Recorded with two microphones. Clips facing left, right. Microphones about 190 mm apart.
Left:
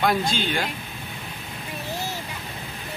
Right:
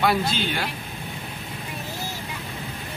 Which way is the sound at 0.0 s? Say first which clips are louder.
Even; 5° right (ahead or behind).